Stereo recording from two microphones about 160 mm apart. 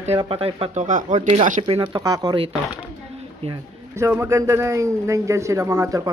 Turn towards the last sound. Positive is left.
turn(degrees=-20)  # may be behind; listen again after turning